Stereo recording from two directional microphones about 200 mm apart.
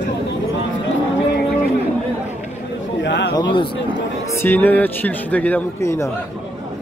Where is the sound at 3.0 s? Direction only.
60° left (ahead or behind).